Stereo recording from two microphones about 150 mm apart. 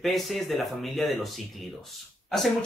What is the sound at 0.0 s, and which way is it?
Speech, centre (ahead or behind).